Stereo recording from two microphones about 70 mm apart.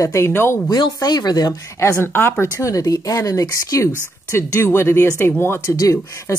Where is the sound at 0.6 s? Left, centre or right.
Left.